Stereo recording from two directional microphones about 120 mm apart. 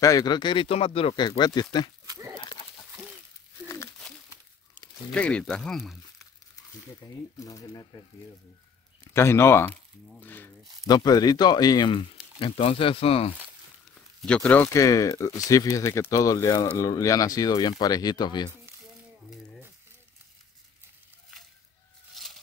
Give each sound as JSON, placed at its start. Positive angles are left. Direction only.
{"t": 0.0, "sound": "speech", "side_deg": 30}
{"t": 2.0, "sound": "a sound", "side_deg": -25}
{"t": 3.6, "sound": "a sound", "side_deg": 25}
{"t": 5.1, "sound": "speech", "side_deg": 10}
{"t": 7.3, "sound": "speech", "side_deg": 30}
{"t": 9.1, "sound": "speech", "side_deg": 20}
{"t": 10.9, "sound": "speech", "side_deg": 35}
{"t": 14.2, "sound": "speech", "side_deg": 10}
{"t": 14.7, "sound": "speech", "side_deg": 25}
{"t": 22.1, "sound": "a sound", "side_deg": 0}